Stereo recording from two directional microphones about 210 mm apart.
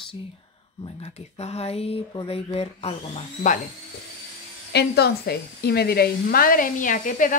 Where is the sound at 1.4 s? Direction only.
30° left (ahead or behind).